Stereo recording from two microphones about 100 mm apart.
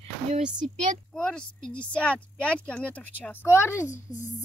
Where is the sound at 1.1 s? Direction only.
10° left (ahead or behind).